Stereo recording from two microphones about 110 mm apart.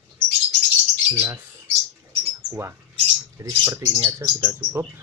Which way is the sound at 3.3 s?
25° right (ahead or behind).